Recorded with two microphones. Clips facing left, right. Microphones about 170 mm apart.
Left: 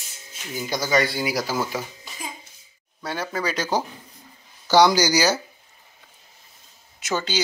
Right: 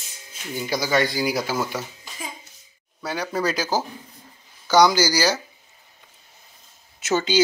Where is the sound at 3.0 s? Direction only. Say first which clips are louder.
Right 2 dB; centre (ahead or behind).